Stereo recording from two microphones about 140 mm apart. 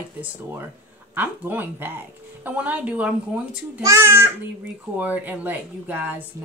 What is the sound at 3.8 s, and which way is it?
Speech, 20° right (ahead or behind).